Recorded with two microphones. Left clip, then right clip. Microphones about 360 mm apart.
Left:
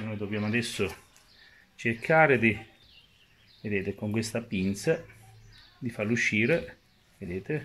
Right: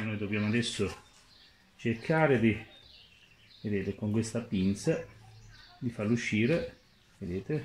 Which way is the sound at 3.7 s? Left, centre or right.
Left.